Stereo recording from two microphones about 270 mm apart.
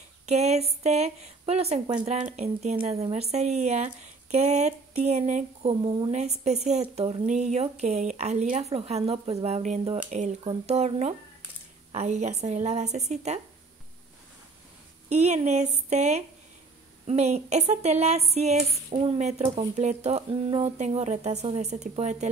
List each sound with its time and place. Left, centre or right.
0.3 s speech: right
15.0 s speech: right